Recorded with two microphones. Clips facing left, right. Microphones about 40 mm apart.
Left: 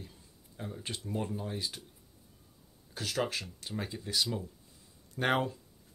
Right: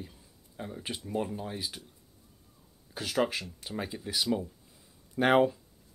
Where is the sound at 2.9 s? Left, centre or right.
Centre.